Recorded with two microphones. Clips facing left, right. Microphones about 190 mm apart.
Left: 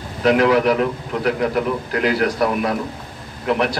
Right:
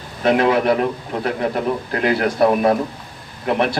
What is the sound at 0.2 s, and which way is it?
A man's voice, 25° right (ahead or behind).